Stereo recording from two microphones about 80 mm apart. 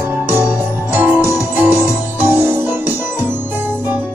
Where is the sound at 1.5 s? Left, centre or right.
Right.